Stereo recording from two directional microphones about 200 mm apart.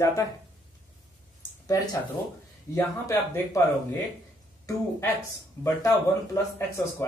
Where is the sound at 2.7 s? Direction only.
15° left (ahead or behind).